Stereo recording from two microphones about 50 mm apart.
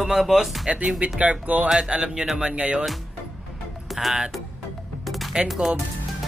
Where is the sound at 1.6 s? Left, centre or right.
Centre.